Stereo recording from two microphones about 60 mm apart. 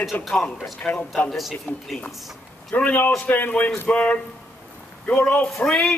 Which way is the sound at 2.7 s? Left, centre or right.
Centre.